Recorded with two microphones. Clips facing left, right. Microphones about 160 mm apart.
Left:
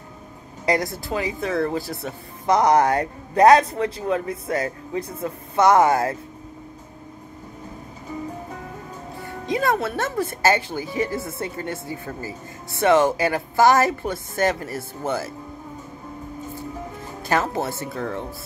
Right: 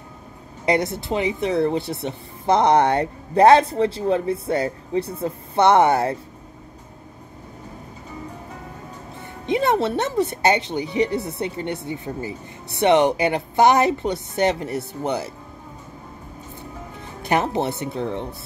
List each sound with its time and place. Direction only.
0.7 s speech: 25° right (ahead or behind)
9.5 s speech: 25° right (ahead or behind)
17.3 s speech: 20° right (ahead or behind)